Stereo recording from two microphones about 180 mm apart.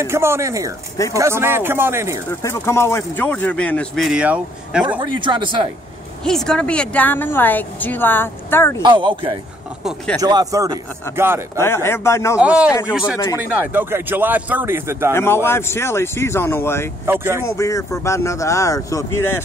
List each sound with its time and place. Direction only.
0.0 s a man's voice: 15° right (ahead or behind)
2.4 s a woman's voice: 15° left (ahead or behind); by 4.8 s 5° right (ahead or behind)
5.0 s speech: 25° right (ahead or behind)
6.2 s a woman's voice: 5° left (ahead or behind)
8.8 s a man's voice: 25° right (ahead or behind)
11.5 s a woman's voice: 15° left (ahead or behind)
12.4 s a man's voice: 5° right (ahead or behind)
15.1 s a woman's voice: 15° left (ahead or behind)
17.0 s a man's voice: 15° right (ahead or behind)
17.5 s a woman's voice: 15° left (ahead or behind)